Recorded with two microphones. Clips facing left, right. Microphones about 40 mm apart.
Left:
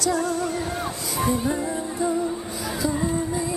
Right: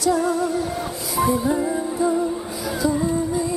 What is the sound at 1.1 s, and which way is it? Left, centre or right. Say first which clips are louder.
Music: right 4 dB; centre.